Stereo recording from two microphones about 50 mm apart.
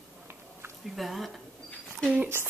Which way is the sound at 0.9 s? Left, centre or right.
Centre.